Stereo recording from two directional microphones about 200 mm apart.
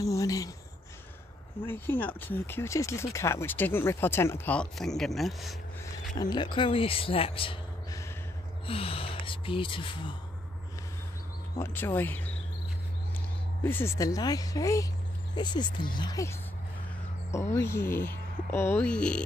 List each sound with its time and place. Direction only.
0.0 s speech: 15° left (ahead or behind)
1.6 s speech: 10° left (ahead or behind)
6.3 s speech: 25° left (ahead or behind)
11.5 s speech: 10° left (ahead or behind)
13.6 s speech: 10° left (ahead or behind)